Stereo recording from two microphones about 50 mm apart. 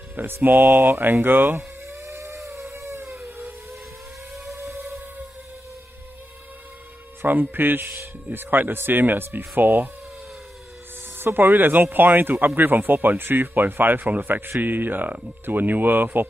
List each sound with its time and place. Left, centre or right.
0.1 s speech: right
1.9 s a sound: right
3.3 s vehicle: right
4.6 s a sound: right
7.2 s speech: right
11.1 s speech: right